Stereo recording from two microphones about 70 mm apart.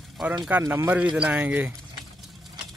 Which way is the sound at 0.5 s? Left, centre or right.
Right.